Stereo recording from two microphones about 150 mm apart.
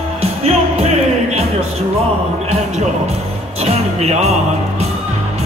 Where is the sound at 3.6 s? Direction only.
45° right (ahead or behind).